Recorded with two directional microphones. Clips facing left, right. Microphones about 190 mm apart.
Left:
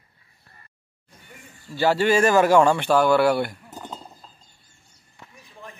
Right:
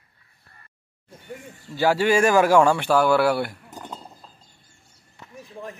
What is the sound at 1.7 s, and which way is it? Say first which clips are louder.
Speech: even; 10° right (ahead or behind).